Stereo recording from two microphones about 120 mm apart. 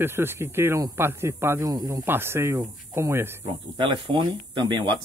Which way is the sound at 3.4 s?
45° right (ahead or behind).